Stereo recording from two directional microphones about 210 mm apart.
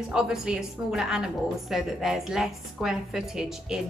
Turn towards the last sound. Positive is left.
turn(degrees=-5)  # may be behind; listen again after turning